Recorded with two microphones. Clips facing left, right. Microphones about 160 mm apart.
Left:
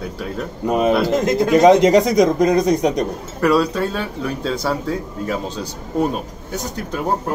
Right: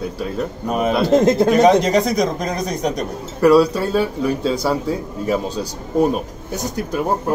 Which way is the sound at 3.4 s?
5° right (ahead or behind).